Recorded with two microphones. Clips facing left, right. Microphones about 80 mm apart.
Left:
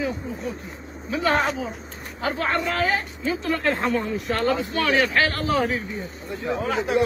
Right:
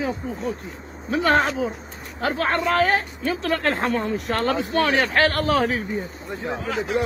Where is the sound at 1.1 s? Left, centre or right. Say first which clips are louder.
Right 3 dB; right.